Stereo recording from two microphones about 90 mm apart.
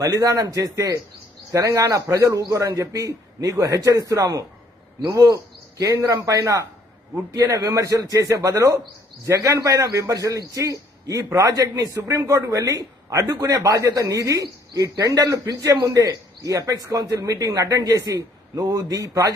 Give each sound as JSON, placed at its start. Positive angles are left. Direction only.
{"t": 0.0, "sound": "a man's voice", "side_deg": -40}
{"t": 5.1, "sound": "a sound", "side_deg": -40}
{"t": 5.9, "sound": "a man's voice", "side_deg": -35}